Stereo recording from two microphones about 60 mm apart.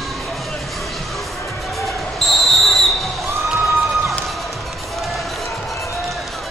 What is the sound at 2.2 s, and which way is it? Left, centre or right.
Basketball bounce, centre.